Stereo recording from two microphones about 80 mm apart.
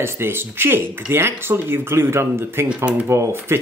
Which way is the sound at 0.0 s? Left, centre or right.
Right.